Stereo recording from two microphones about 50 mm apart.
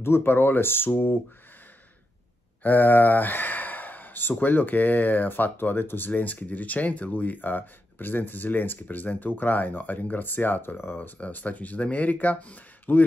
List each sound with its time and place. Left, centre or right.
0.0 s speech: left
2.6 s speech: left